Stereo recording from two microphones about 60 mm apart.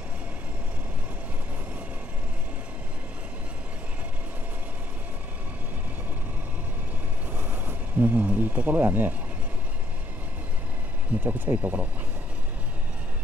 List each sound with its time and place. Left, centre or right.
7.3 s speech: right
11.1 s speech: right